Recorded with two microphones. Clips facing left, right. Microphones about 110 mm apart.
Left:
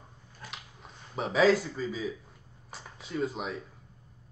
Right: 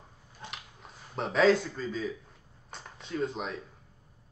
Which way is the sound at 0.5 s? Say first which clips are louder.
Even; centre (ahead or behind).